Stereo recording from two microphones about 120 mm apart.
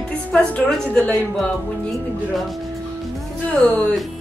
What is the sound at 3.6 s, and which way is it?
Speech, 10° left (ahead or behind).